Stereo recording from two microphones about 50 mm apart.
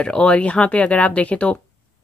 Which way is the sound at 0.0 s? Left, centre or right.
Left.